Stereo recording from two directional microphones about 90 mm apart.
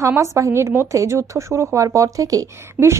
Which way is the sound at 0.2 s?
35° right (ahead or behind).